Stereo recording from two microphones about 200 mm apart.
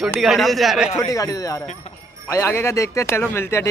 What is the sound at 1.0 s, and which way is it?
A man's voice, 20° left (ahead or behind).